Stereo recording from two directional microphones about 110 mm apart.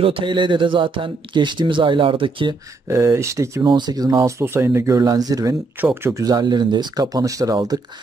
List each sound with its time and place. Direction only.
0.0 s speech: 55° right (ahead or behind)
2.9 s speech: 25° right (ahead or behind)
3.6 s speech: 40° right (ahead or behind)
5.8 s speech: 20° right (ahead or behind)
6.1 s speech: 35° right (ahead or behind)